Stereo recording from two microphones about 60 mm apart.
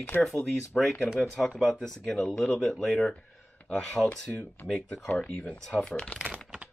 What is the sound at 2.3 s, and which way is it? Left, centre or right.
Speech, centre.